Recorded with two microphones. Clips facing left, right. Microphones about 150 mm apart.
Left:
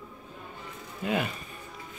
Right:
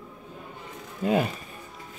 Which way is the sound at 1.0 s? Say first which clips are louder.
Right 5 dB; 35° right (ahead or behind).